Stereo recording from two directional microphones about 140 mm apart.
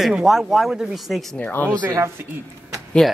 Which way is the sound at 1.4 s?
10° left (ahead or behind).